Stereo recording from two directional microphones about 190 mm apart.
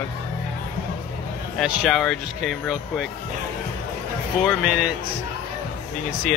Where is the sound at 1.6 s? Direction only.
Centre (ahead or behind).